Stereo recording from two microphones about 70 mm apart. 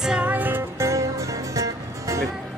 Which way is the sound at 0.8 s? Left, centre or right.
Right.